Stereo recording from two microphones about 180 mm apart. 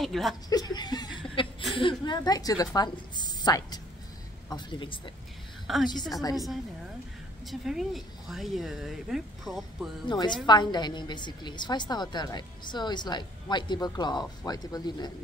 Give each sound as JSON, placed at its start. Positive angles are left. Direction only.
{"t": 0.0, "sound": "speech", "side_deg": 0}
{"t": 0.5, "sound": "chuckle", "side_deg": 20}
{"t": 1.8, "sound": "a woman's voice", "side_deg": 25}
{"t": 5.7, "sound": "speech", "side_deg": 0}
{"t": 7.6, "sound": "speech", "side_deg": 0}
{"t": 10.0, "sound": "a woman's voice", "side_deg": 25}